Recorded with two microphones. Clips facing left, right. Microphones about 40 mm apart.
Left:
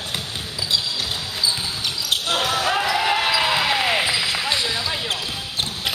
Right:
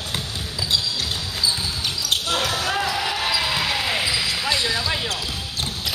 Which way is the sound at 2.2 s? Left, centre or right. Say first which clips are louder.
Left 5 dB; left.